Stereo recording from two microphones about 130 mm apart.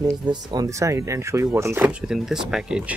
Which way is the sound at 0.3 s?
30° right (ahead or behind).